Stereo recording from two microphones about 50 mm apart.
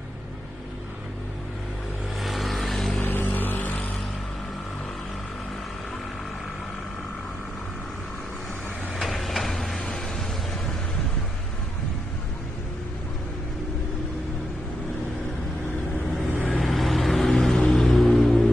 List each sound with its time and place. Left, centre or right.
2.2 s vehicle: centre
3.0 s vehicle: left
8.9 s a sound: centre
16.4 s music: centre